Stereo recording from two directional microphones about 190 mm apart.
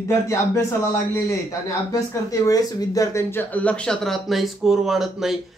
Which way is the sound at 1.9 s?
15° left (ahead or behind).